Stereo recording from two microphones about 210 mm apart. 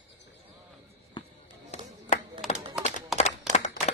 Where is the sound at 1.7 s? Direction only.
35° left (ahead or behind).